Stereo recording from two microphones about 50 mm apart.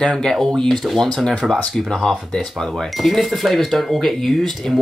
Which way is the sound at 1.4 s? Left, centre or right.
Centre.